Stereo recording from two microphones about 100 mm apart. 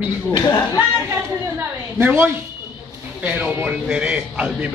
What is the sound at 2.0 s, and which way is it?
Speech, 20° right (ahead or behind).